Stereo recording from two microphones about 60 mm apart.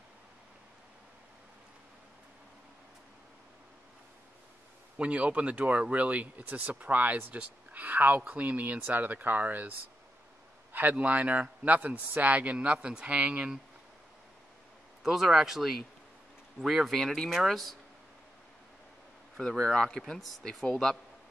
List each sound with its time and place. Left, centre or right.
4.9 s speech: centre
15.0 s speech: centre
19.4 s speech: centre